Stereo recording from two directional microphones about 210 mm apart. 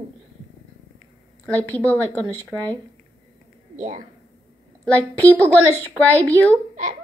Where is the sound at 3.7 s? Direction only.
35° right (ahead or behind).